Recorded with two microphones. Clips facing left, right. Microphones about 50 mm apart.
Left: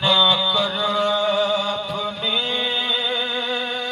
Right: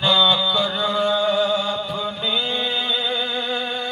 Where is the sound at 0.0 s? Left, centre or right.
Centre.